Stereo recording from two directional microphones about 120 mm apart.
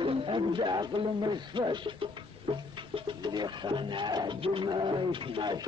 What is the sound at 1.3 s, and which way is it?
Speech, 40° right (ahead or behind).